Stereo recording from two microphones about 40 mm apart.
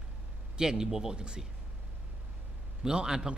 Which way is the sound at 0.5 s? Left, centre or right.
Centre.